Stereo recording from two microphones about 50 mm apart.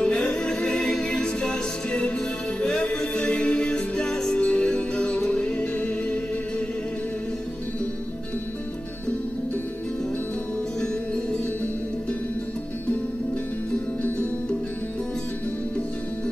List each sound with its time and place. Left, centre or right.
0.0 s music: left
10.8 s music: centre
14.0 s music: left